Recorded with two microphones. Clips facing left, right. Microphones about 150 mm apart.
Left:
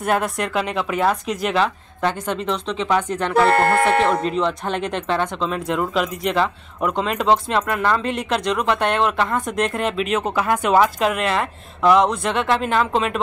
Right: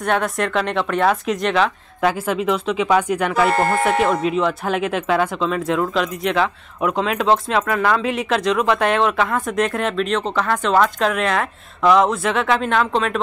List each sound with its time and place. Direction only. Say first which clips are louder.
0.0 s speech: right 1 dB; 5° left (ahead or behind)
3.5 s speech: left 1 dB; 65° left (ahead or behind)
4.2 s speech: right 2 dB; 5° right (ahead or behind)